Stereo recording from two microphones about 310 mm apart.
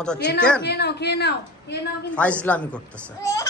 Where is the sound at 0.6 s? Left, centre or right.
Left.